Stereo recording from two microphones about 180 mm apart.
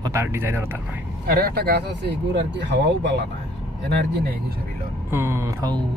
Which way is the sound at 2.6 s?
80° right.